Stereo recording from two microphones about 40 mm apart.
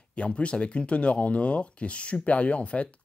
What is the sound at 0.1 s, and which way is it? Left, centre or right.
Speech, left.